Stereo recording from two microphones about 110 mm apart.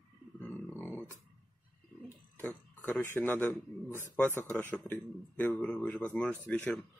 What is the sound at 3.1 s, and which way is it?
A man's voice, 15° left (ahead or behind).